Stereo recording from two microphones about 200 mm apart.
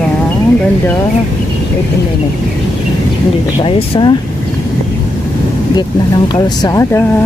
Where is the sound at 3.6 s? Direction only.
20° left (ahead or behind).